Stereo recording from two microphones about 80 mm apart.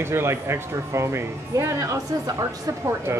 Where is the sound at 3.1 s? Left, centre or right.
Right.